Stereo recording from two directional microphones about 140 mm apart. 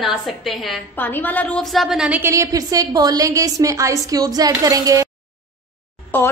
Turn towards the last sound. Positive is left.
turn(degrees=15)  # may be behind; listen again after turning